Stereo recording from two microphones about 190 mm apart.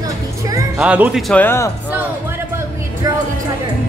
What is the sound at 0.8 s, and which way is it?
Speech, 5° right (ahead or behind).